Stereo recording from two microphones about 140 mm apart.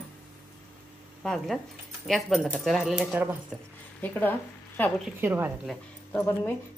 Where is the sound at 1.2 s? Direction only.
5° left (ahead or behind).